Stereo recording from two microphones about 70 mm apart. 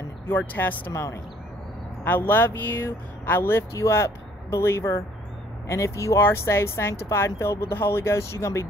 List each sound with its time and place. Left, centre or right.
0.3 s speech: left